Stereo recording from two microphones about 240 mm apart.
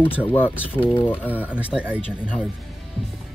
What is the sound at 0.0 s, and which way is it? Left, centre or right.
Speech, centre.